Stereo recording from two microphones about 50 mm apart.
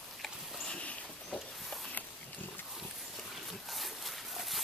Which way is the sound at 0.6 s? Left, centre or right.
Left.